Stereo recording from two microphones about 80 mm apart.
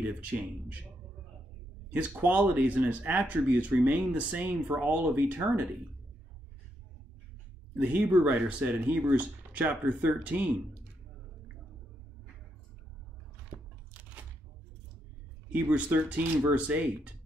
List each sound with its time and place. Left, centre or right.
0.0 s speech: centre
1.9 s speech: centre
7.8 s speech: centre
15.6 s speech: centre